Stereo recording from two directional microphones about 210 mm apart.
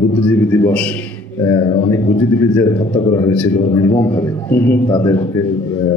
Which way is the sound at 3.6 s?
15° left (ahead or behind).